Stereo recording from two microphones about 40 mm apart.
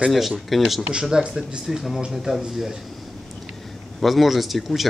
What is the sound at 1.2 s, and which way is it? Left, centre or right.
Speech, centre.